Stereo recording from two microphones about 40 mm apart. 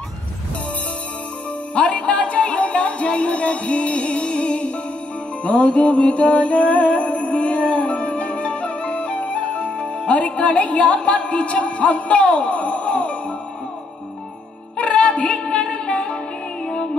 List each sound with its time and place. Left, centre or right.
1.8 s music: left
14.8 s music: left